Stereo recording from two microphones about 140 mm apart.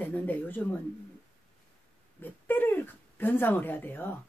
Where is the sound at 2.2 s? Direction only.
15° left (ahead or behind).